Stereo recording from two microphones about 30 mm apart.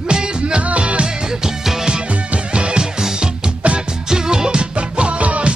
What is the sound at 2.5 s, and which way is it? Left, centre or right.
Music, right.